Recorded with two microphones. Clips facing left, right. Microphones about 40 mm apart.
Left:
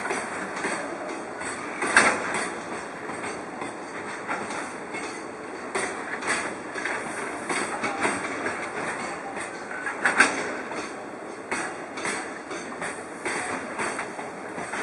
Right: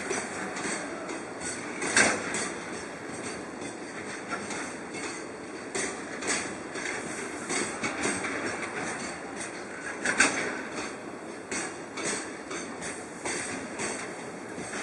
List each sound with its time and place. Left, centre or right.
0.0 s train: centre
1.8 s a sound: centre
5.7 s a sound: centre
8.0 s train: centre
10.2 s train: centre
11.5 s music: centre
12.8 s train: centre